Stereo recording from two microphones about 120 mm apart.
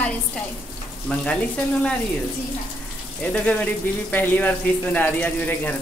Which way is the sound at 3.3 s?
10° left (ahead or behind).